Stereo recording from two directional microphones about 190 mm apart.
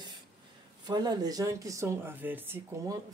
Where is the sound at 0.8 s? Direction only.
20° right (ahead or behind).